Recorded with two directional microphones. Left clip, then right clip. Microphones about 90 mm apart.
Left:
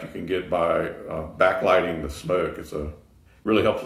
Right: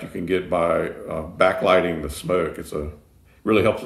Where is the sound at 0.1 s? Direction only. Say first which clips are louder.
Right 3 dB; 35° right (ahead or behind).